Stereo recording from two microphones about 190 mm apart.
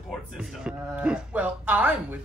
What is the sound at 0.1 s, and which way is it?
Speech, 5° right (ahead or behind).